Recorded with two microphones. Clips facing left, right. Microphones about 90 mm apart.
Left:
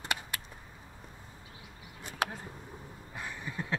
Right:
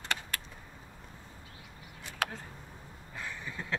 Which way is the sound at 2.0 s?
20° left (ahead or behind).